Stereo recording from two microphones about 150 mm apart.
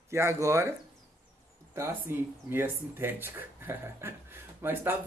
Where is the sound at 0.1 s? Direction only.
20° right (ahead or behind).